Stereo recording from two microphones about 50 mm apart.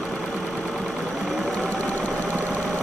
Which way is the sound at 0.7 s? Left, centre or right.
Centre.